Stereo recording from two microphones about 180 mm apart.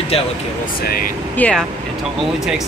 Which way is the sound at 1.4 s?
5° left (ahead or behind).